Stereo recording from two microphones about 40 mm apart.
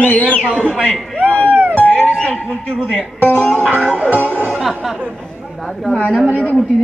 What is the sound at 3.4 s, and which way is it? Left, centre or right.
Music, left.